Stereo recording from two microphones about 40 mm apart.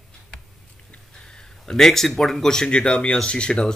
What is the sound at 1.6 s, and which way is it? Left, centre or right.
Speech, centre.